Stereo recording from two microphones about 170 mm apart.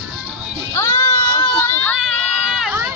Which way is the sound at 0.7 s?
15° left (ahead or behind).